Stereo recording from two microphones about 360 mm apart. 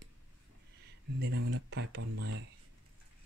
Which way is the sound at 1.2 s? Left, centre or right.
Right.